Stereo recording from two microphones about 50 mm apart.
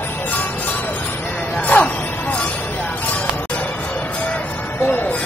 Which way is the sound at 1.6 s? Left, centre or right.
Left.